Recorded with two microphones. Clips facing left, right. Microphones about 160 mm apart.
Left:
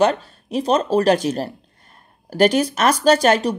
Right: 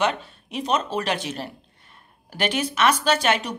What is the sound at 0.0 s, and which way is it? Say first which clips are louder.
Speech: left 7 dB; 40° left (ahead or behind).